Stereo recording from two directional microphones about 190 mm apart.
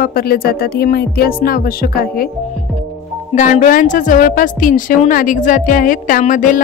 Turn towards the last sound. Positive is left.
turn(degrees=45)  # may be behind; listen again after turning